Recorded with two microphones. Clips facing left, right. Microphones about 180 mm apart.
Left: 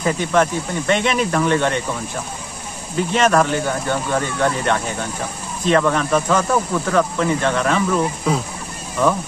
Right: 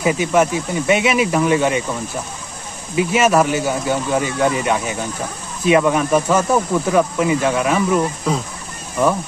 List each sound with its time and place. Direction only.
0.0 s speech: 10° right (ahead or behind)
3.0 s speech: 10° right (ahead or behind)